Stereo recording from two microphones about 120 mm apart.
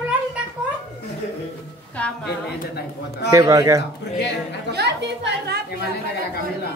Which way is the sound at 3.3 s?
25° right (ahead or behind).